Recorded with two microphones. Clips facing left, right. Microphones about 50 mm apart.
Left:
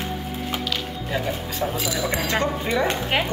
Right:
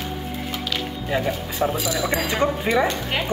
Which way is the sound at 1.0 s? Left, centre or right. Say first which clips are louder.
Right 3 dB; centre.